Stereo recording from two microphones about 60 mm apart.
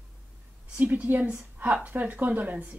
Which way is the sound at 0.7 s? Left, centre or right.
Right.